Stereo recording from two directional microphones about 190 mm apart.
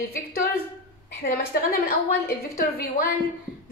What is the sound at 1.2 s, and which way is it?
Speech, 55° left (ahead or behind).